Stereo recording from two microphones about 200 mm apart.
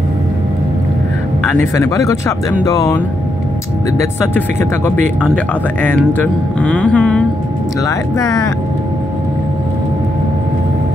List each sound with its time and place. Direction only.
1.5 s speech: 15° left (ahead or behind)
5.3 s speech: 10° left (ahead or behind)
7.8 s speech: 15° left (ahead or behind)